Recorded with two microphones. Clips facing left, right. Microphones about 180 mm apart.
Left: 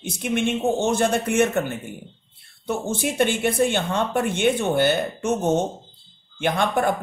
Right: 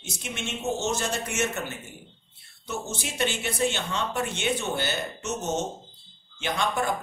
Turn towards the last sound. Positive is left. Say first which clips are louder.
# left 6 dB
turn(degrees=55)  # may be behind; listen again after turning